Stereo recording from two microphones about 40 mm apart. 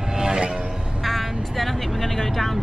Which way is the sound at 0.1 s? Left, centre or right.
Centre.